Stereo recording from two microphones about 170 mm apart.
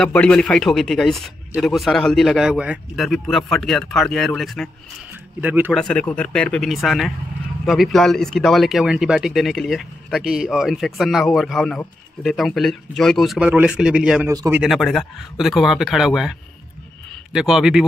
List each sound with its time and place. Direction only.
0.0 s speech: 5° left (ahead or behind)
5.4 s speech: 10° right (ahead or behind)
5.7 s speech: 5° left (ahead or behind)
14.2 s speech: 15° right (ahead or behind)
14.6 s speech: centre (ahead or behind)